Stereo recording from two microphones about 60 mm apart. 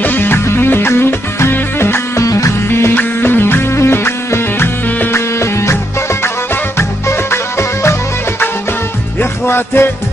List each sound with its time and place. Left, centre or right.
0.0 s music: left
2.2 s music: left
2.7 s music: left
9.2 s music: left